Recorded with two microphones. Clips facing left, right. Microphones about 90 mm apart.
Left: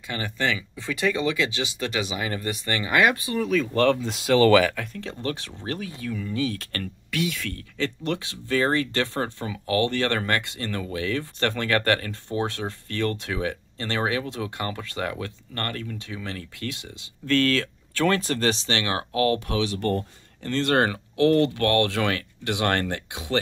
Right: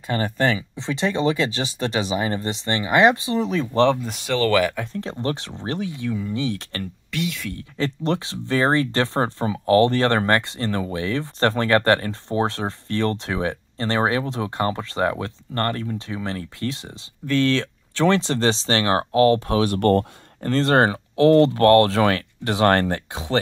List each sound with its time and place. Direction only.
0.0 s speech: 40° right (ahead or behind)
0.6 s speech: 25° right (ahead or behind)
4.0 s speech: centre (ahead or behind)
4.7 s speech: 25° right (ahead or behind)
7.1 s speech: centre (ahead or behind)
7.7 s speech: 30° right (ahead or behind)
19.6 s speech: 55° right (ahead or behind)
20.4 s speech: 35° right (ahead or behind)